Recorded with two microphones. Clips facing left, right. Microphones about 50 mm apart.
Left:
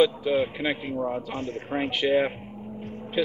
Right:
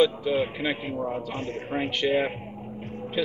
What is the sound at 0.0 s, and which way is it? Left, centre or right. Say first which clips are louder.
A man's voice: left 1 dB; centre.